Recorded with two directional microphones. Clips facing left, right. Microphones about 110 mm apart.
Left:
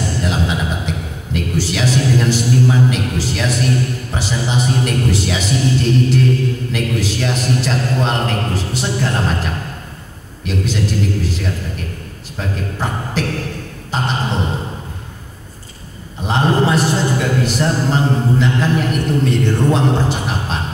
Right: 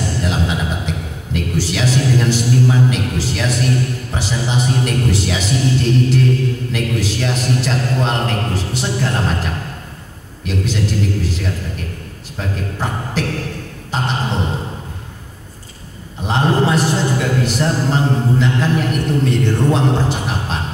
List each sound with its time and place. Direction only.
0.0 s a man's voice: 10° left (ahead or behind)
16.3 s a man's voice: 15° left (ahead or behind)